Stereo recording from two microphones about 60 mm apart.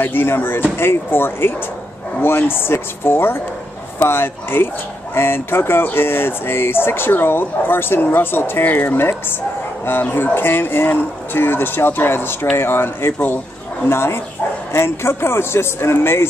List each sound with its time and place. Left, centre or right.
0.0 s speech: left